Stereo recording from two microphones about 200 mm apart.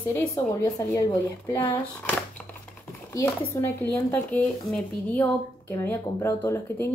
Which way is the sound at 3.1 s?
15° left (ahead or behind).